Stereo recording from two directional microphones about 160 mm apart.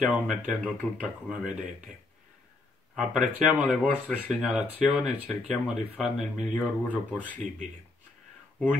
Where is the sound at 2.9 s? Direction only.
5° right (ahead or behind).